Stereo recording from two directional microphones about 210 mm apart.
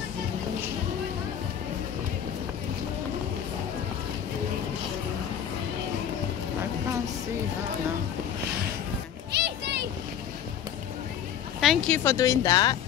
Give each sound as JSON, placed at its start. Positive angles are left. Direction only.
{"t": 9.3, "sound": "children playing", "side_deg": -50}
{"t": 11.6, "sound": "speech", "side_deg": 0}
{"t": 12.0, "sound": "speech", "side_deg": 15}